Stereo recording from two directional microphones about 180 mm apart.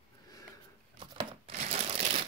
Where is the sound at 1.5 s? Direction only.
40° right (ahead or behind).